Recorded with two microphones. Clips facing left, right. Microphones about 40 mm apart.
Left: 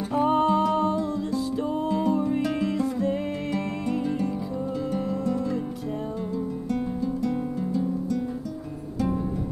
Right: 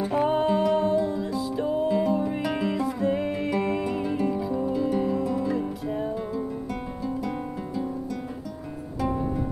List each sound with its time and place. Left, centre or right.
0.0 s music: centre
0.3 s music: centre
7.1 s music: centre